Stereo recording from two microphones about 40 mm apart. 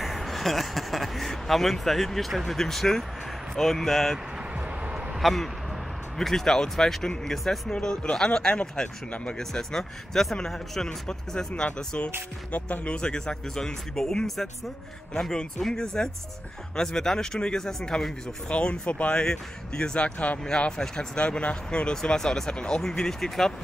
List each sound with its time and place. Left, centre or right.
0.0 s speech: centre
4.6 s vehicle: right
5.2 s speech: centre
7.7 s speech: left; by 10.9 s centre
10.9 s speech: centre
12.4 s speech: left
12.8 s speech: left
14.2 s speech: centre
15.6 s speech: centre
18.5 s speech: left
19.1 s speech: left
22.1 s speech: centre